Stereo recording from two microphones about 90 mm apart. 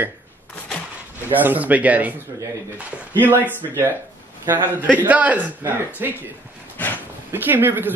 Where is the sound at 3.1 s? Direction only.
20° right (ahead or behind).